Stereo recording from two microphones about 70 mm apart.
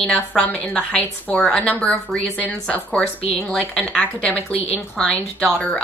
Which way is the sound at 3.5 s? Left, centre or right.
Centre.